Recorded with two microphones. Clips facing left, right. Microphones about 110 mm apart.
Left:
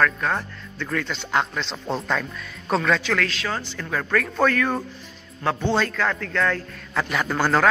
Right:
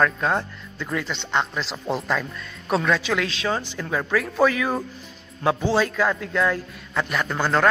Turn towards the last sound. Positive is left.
turn(degrees=5)  # may be behind; listen again after turning